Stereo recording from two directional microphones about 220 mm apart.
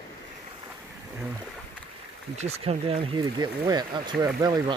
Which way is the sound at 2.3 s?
30° right (ahead or behind).